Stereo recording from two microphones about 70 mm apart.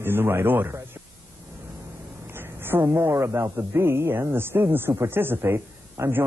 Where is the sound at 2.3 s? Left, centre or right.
Right.